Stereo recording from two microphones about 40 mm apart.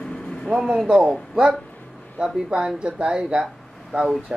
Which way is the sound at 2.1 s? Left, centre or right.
Centre.